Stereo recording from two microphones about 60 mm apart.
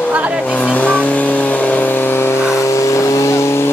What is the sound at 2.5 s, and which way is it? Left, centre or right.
Vehicle, left.